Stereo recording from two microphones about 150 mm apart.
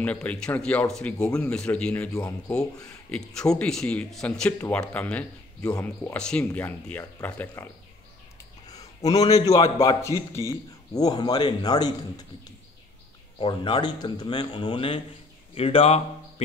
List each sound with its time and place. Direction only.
0.0 s speech: 10° left (ahead or behind)
2.1 s a man's voice: 20° left (ahead or behind)
3.1 s speech: 5° left (ahead or behind)
8.6 s a man's voice: 25° left (ahead or behind)
13.4 s speech: 30° left (ahead or behind)